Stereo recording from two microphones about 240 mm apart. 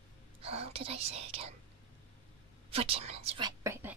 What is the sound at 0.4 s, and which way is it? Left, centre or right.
Speech, right.